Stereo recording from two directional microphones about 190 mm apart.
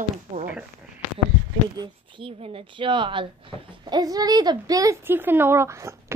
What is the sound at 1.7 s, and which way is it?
Speech, 25° right (ahead or behind).